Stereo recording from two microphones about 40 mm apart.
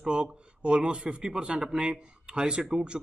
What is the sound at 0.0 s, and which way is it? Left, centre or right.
A man's voice, right.